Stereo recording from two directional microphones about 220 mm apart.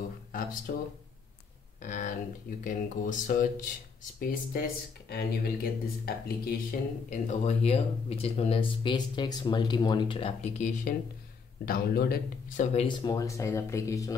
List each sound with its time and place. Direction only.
0.3 s speech: 40° left (ahead or behind)
1.8 s speech: 35° left (ahead or behind)
7.1 s speech: 30° left (ahead or behind)
12.8 s speech: 20° left (ahead or behind)